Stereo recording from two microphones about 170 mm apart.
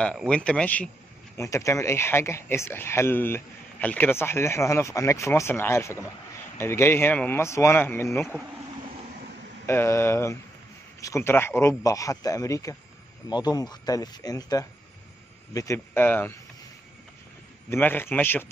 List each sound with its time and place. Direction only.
0.0 s speech: 5° left (ahead or behind)
1.3 s speech: 20° left (ahead or behind)
9.7 s a man's voice: 15° left (ahead or behind)
17.6 s speech: 10° left (ahead or behind)